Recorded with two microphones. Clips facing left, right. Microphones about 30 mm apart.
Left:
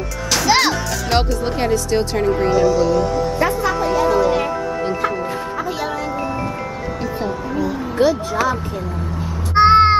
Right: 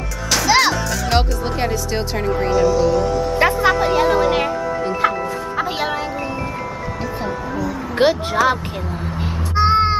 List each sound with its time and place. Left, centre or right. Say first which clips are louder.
0.3 s speech: right 1 dB; centre
3.3 s speech: right 3 dB; right
7.5 s speech: left 2 dB; centre
7.9 s speech: right 1 dB; right
9.6 s crow: left 5 dB; left